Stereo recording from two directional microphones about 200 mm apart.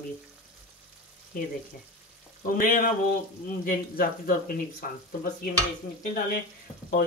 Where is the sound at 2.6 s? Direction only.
45° left (ahead or behind).